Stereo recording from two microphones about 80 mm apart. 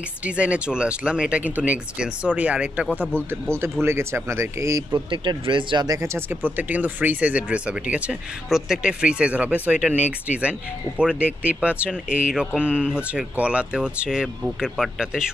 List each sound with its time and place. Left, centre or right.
0.2 s speech: centre
3.3 s speech: right
4.9 s speech: right
5.9 s speech: right; by 8.2 s centre
8.5 s speech: centre